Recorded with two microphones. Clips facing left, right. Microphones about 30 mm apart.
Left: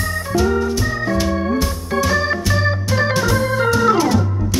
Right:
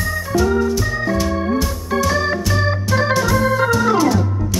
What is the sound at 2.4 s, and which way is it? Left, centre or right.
Organ, centre.